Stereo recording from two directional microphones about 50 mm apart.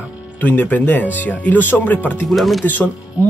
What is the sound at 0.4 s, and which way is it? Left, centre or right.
Speech, left.